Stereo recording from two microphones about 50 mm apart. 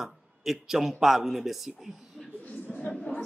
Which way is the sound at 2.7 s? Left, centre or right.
Left.